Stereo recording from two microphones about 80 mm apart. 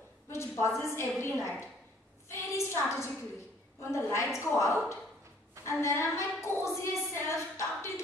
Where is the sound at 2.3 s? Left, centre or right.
Left.